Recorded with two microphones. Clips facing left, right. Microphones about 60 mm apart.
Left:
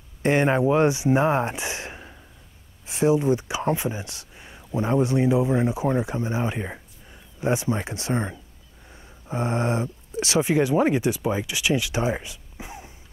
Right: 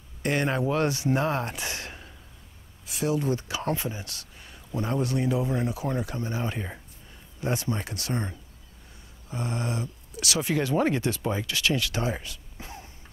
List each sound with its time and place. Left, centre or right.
0.2 s speech: left